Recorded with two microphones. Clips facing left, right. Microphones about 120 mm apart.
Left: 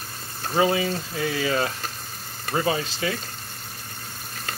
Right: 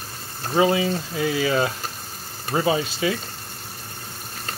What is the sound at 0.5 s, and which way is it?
Speech, 20° right (ahead or behind).